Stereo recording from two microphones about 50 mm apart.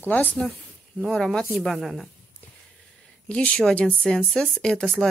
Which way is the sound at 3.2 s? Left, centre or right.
Left.